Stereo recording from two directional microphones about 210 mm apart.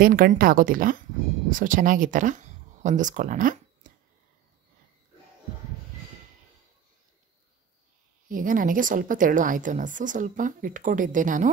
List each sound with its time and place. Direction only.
0.0 s a woman's voice: 40° right (ahead or behind)
8.3 s a woman's voice: 40° right (ahead or behind)